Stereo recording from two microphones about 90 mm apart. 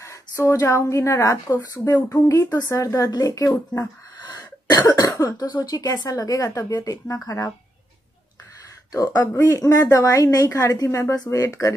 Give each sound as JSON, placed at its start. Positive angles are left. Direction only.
{"t": 0.0, "sound": "a woman's voice", "side_deg": 35}
{"t": 2.0, "sound": "speech", "side_deg": 20}
{"t": 2.2, "sound": "a woman's voice", "side_deg": 35}
{"t": 4.2, "sound": "cough", "side_deg": 50}
{"t": 5.1, "sound": "a woman's voice", "side_deg": 40}
{"t": 8.9, "sound": "a woman's voice", "side_deg": 40}